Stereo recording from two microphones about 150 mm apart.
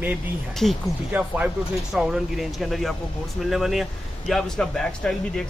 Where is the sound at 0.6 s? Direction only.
Centre (ahead or behind).